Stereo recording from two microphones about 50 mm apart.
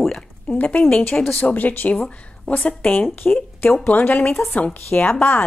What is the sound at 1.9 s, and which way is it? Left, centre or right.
Speech, centre.